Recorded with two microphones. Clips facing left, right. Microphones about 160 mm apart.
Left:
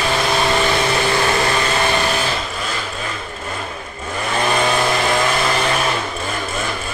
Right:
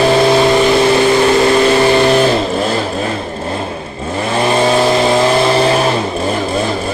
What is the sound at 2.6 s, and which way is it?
Vehicle, 40° right (ahead or behind).